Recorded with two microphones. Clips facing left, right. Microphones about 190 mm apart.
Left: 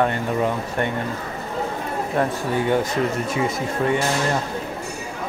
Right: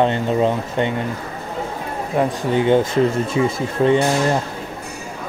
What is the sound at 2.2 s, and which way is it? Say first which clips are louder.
Speech: right 3 dB; 10° right (ahead or behind).